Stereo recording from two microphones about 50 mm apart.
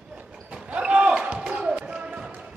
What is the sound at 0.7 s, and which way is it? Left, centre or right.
Basketball bounce, right.